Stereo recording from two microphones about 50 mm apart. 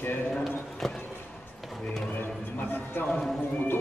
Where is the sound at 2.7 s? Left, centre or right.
Left.